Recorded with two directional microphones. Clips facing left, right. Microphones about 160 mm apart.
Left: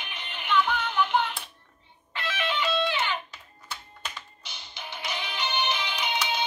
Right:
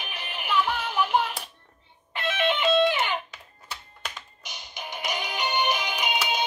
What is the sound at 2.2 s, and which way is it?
Music, 25° right (ahead or behind).